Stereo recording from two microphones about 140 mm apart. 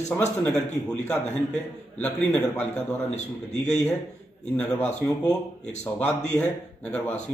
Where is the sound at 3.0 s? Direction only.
55° left (ahead or behind).